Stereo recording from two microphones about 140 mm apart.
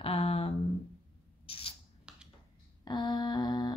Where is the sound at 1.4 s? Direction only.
40° left (ahead or behind).